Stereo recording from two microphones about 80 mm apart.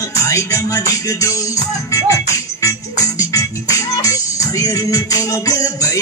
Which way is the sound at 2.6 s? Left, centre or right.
Left.